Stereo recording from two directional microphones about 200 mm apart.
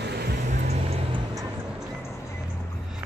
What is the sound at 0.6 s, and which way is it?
Music, 30° right (ahead or behind).